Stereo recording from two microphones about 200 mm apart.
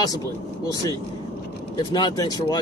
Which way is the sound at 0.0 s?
15° left (ahead or behind).